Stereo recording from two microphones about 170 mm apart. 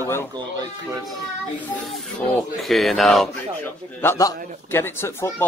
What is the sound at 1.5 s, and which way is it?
Speech, 5° left (ahead or behind).